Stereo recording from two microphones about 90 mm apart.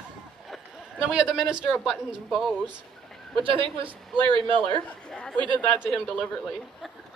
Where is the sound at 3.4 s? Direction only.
75° right (ahead or behind).